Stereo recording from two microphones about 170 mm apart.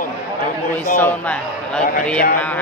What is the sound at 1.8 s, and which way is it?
Speech, 50° left (ahead or behind).